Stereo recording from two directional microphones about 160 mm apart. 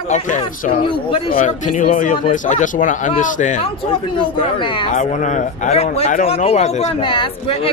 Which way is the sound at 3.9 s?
35° left (ahead or behind).